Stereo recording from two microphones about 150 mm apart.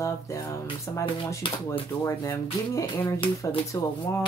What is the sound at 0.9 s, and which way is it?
Speech, 20° left (ahead or behind).